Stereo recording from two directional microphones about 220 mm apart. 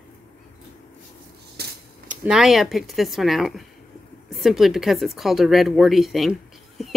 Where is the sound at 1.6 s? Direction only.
45° right (ahead or behind).